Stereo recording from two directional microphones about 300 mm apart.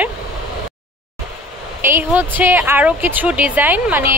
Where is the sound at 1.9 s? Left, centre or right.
Centre.